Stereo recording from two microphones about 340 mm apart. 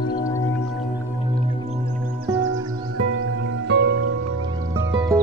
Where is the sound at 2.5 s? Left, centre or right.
Right.